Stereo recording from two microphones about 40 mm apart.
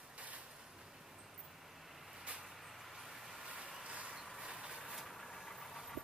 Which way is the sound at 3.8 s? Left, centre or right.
Right.